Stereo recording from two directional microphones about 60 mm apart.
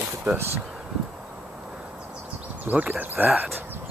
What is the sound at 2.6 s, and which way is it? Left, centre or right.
Speech, right.